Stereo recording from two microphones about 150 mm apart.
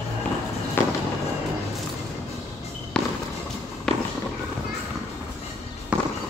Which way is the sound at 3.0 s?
5° left (ahead or behind).